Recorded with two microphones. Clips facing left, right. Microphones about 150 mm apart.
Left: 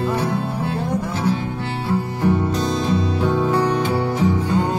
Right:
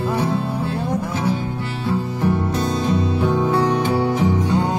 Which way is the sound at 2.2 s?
10° right (ahead or behind).